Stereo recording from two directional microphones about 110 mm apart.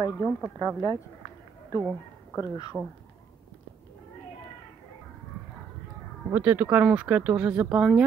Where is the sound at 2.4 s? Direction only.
35° left (ahead or behind).